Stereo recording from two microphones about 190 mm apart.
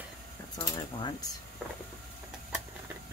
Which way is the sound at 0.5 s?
20° left (ahead or behind).